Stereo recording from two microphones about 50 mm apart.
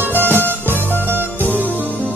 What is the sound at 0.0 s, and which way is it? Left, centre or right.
Music, right.